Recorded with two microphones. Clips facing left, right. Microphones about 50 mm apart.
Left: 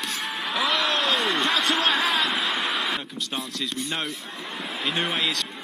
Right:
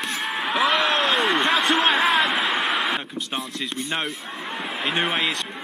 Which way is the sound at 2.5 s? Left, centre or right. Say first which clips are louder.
Right 3 dB; centre.